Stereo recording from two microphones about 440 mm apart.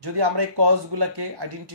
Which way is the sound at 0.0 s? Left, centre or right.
Right.